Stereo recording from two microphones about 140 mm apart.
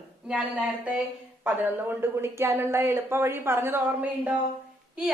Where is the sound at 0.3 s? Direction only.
10° right (ahead or behind).